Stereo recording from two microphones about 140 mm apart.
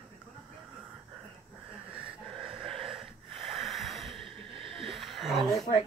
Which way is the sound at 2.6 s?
Centre (ahead or behind).